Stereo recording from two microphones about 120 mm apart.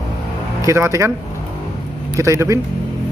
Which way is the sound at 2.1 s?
25° right (ahead or behind).